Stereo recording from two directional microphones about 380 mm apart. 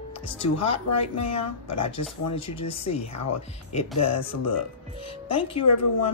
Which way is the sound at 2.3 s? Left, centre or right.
Centre.